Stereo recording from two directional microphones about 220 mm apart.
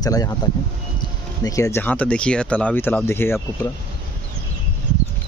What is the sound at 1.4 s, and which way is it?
Speech, 15° left (ahead or behind).